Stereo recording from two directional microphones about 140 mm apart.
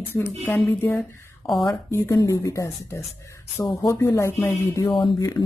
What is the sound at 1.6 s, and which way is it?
Speech, 20° left (ahead or behind).